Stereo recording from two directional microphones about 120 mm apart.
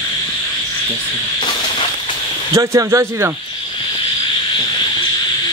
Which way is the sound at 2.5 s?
25° right (ahead or behind).